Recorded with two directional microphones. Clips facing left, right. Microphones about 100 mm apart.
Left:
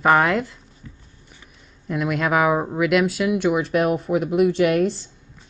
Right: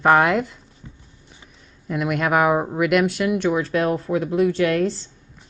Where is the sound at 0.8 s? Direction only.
30° right (ahead or behind).